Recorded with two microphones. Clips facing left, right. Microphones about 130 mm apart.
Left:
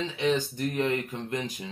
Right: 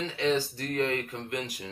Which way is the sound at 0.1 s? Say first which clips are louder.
Right 1 dB; 20° left (ahead or behind).